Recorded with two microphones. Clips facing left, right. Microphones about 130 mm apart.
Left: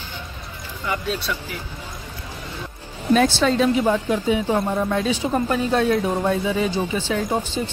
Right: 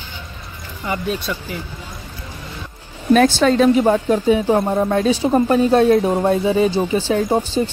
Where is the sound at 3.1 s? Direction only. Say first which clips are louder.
Right 4 dB; 55° right (ahead or behind).